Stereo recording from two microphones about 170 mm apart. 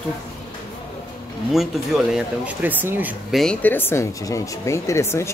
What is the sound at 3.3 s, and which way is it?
Speech, 5° left (ahead or behind).